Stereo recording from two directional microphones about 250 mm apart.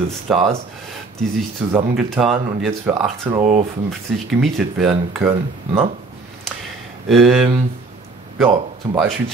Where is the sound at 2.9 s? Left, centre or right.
Centre.